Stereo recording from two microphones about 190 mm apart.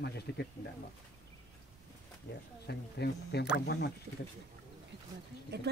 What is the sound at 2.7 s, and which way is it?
Speech, 60° left (ahead or behind).